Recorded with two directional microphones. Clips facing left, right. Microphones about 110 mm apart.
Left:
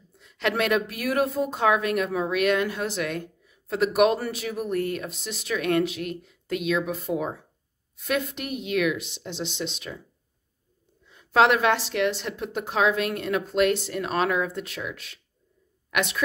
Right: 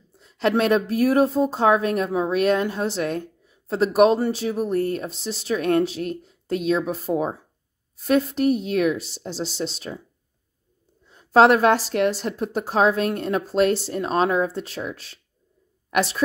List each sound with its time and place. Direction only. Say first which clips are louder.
0.2 s speech: right 5 dB; 35° right (ahead or behind)
11.1 s speech: right 5 dB; 40° right (ahead or behind)